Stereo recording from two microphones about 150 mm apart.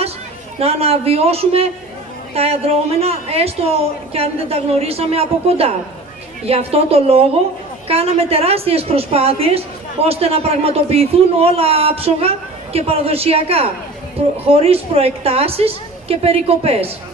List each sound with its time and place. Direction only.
0.6 s a man's voice: 40° right (ahead or behind)